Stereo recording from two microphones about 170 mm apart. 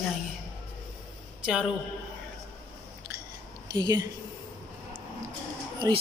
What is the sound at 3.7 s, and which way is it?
Speech, 25° right (ahead or behind).